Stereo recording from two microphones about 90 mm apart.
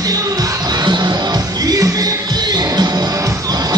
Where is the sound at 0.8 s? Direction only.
50° right (ahead or behind).